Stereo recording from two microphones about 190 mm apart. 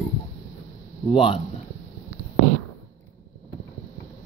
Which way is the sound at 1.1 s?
30° left (ahead or behind).